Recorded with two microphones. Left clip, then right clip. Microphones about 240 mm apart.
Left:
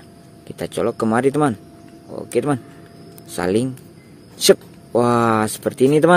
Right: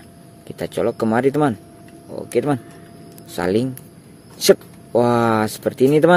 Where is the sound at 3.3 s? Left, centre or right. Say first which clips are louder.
Even; centre.